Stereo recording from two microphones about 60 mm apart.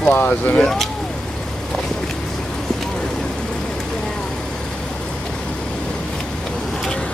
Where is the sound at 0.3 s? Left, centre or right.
Left.